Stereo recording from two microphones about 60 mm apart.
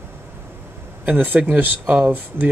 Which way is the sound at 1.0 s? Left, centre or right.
Right.